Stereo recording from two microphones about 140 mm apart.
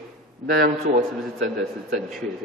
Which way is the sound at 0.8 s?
55° right (ahead or behind).